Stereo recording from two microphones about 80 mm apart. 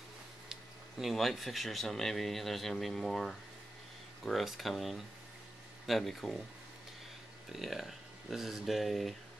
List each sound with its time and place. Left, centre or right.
0.5 s speech: centre
7.5 s speech: centre